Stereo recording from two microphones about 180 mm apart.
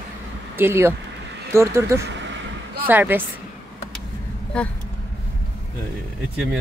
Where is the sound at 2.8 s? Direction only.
10° right (ahead or behind).